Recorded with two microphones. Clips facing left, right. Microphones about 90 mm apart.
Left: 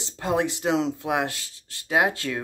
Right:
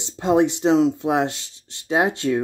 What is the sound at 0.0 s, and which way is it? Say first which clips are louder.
Speech: right 7 dB; 25° right (ahead or behind).